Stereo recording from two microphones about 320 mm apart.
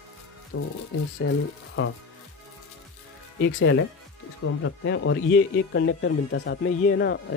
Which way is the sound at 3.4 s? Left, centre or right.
Left.